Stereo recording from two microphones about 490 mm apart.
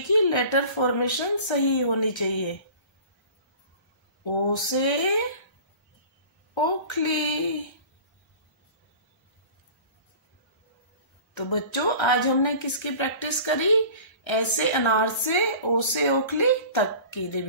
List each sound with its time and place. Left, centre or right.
0.1 s a woman's voice: left
4.2 s a woman's voice: left
6.5 s a woman's voice: left
11.3 s a woman's voice: left